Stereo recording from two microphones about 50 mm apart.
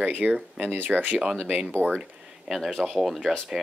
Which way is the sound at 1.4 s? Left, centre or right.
Right.